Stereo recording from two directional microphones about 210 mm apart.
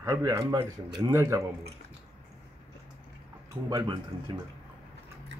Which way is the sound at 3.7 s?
20° right (ahead or behind).